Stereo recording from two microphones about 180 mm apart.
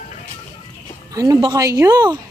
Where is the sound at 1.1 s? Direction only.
20° right (ahead or behind).